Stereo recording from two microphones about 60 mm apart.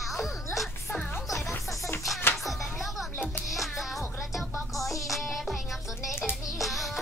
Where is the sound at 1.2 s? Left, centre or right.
Left.